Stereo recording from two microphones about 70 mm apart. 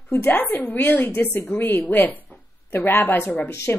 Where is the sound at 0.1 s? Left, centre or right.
Left.